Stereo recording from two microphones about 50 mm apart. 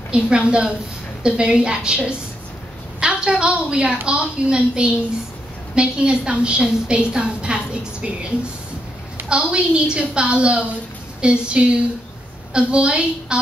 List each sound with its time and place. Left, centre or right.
0.1 s a woman's voice: centre
9.3 s a woman's voice: right